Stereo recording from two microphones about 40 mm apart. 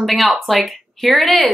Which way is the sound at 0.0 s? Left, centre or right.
Centre.